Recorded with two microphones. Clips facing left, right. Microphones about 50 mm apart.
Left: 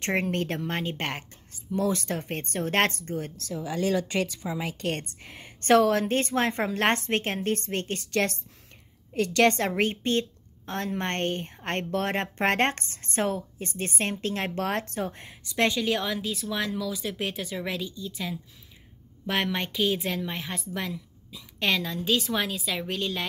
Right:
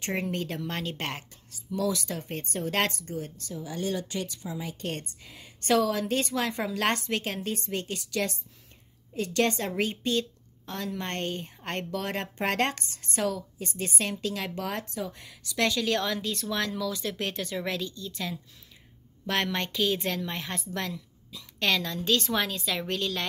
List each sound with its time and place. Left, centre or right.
0.0 s a woman's voice: left
4.6 s a woman's voice: left
4.8 s a woman's voice: left
9.1 s a woman's voice: left
15.1 s a woman's voice: left
15.8 s a woman's voice: centre